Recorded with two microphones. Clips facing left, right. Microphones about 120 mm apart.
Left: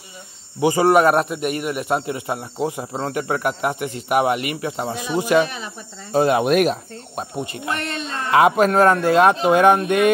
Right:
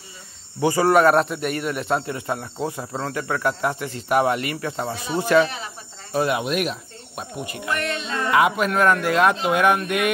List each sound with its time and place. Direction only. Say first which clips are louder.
0.6 s speech: left 2 dB; 15° left (ahead or behind)
6.1 s speech: left 5 dB; 30° left (ahead or behind)
6.4 s speech: left 7 dB; 45° left (ahead or behind)
7.3 s speech: even; 30° left (ahead or behind)